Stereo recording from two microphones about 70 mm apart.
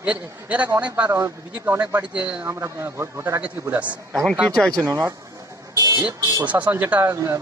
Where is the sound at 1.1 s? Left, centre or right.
Right.